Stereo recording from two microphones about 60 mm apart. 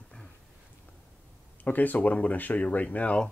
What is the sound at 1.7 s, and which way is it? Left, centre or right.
Speech, left.